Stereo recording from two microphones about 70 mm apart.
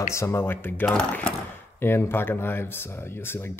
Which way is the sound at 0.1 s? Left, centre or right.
Left.